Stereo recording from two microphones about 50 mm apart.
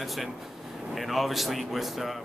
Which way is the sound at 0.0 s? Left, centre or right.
Centre.